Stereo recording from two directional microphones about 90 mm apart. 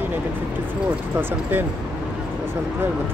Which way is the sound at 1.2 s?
20° right (ahead or behind).